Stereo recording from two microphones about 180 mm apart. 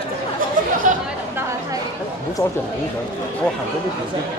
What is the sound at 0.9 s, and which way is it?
Chatter, 45° right (ahead or behind).